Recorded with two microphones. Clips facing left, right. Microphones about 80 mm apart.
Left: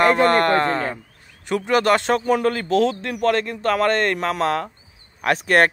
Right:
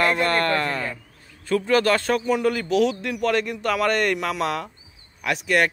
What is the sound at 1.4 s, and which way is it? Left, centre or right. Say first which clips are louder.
Speech: left 1 dB; left.